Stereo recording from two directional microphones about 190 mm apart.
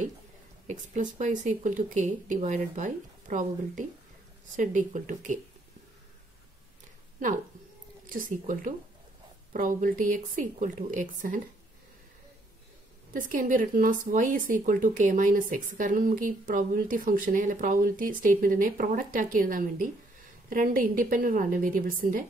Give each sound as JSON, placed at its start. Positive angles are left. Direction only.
{"t": 0.7, "sound": "speech", "side_deg": -40}
{"t": 8.1, "sound": "speech", "side_deg": -45}
{"t": 13.1, "sound": "speech", "side_deg": -45}